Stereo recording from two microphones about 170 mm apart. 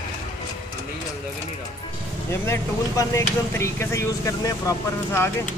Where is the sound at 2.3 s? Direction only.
15° left (ahead or behind).